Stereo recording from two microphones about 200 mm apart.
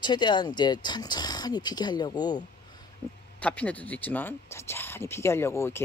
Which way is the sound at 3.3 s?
5° left (ahead or behind).